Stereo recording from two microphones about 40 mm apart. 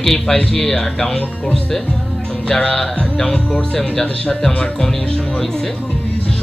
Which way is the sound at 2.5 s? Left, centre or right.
Centre.